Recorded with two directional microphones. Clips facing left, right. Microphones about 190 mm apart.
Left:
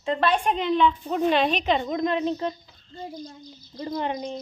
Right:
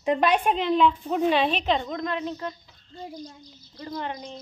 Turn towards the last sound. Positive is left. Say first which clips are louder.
# left 5 dB
turn(degrees=15)  # may be behind; listen again after turning